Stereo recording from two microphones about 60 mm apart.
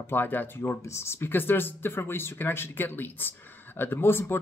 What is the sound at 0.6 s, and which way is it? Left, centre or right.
Speech, left.